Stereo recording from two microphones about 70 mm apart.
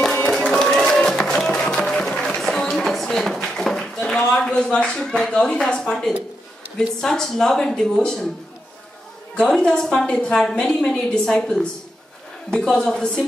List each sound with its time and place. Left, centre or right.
0.5 s music: centre
1.8 s music: centre
2.0 s a sound: centre
5.7 s a woman's voice: centre
9.4 s a woman's voice: centre